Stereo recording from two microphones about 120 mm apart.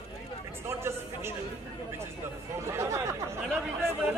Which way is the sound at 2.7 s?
25° right (ahead or behind).